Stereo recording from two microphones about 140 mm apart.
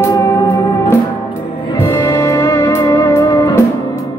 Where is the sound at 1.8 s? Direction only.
20° left (ahead or behind).